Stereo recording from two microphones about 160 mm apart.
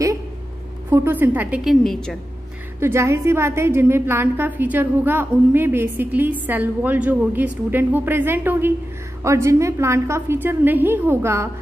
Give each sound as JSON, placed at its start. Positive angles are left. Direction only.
{"t": 0.8, "sound": "a woman's voice", "side_deg": -15}
{"t": 2.8, "sound": "a woman's voice", "side_deg": -15}